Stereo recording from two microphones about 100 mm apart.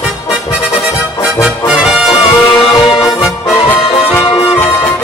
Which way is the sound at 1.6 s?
5° right (ahead or behind).